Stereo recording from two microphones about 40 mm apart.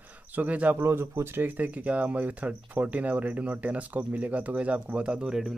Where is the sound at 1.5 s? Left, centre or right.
Right.